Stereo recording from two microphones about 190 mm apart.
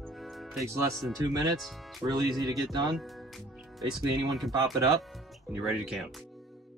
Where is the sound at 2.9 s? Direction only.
Centre (ahead or behind).